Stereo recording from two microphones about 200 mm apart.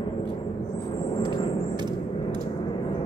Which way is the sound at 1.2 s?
20° right (ahead or behind).